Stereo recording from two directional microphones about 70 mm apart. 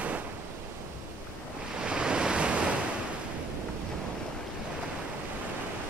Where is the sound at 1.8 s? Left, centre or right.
Centre.